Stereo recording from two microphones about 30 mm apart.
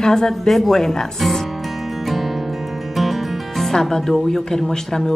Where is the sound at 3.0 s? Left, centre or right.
Centre.